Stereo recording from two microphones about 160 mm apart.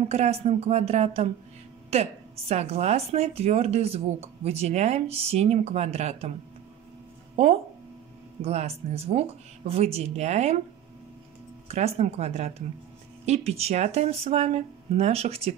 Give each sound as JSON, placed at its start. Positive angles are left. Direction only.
{"t": 0.1, "sound": "speech", "side_deg": -40}
{"t": 7.4, "sound": "speech", "side_deg": -40}
{"t": 11.6, "sound": "speech", "side_deg": -45}